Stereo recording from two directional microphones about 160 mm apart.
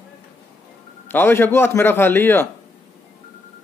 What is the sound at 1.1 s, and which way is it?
A man's voice, 15° left (ahead or behind).